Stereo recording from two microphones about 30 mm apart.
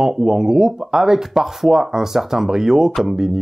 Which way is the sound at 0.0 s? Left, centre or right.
Centre.